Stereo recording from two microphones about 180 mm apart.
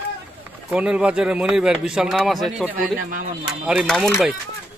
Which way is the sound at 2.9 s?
50° right (ahead or behind).